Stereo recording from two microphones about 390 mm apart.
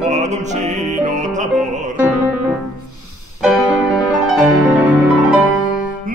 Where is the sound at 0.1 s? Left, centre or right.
Centre.